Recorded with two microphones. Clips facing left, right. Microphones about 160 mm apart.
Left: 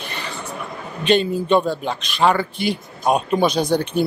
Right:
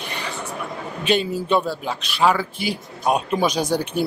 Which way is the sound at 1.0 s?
5° right (ahead or behind).